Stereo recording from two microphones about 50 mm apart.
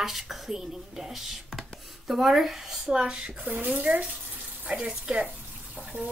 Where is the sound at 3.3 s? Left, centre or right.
Right.